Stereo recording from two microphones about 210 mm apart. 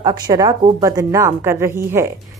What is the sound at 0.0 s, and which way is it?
A woman's voice, 20° right (ahead or behind).